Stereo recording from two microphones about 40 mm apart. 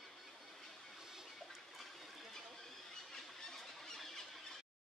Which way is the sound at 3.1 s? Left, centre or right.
Centre.